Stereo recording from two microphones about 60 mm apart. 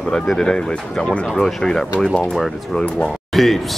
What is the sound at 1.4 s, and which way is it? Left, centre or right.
Speech, centre.